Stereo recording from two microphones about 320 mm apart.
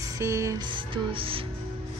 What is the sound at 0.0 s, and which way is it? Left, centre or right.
A woman's voice, centre.